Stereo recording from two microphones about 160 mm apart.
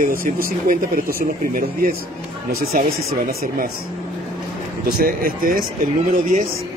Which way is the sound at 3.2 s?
65° right (ahead or behind).